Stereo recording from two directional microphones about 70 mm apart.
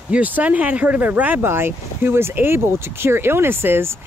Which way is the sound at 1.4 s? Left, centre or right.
Right.